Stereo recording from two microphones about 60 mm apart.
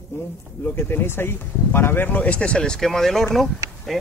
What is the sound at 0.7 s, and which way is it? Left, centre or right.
Speech, left.